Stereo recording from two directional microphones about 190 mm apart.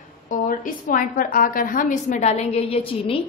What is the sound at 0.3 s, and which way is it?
A woman's voice, 45° left (ahead or behind).